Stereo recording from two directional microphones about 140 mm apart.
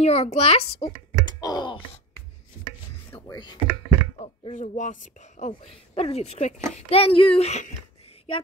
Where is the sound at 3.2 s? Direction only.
30° left (ahead or behind).